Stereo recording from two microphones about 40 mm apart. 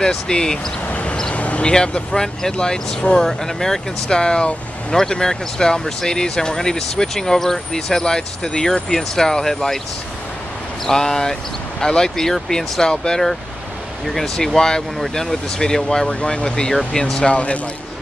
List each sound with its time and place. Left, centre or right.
0.0 s speech: centre
0.8 s vehicle: left
1.3 s a sound: left
1.7 s speech: centre
10.9 s speech: centre
14.0 s speech: centre
17.3 s speech: left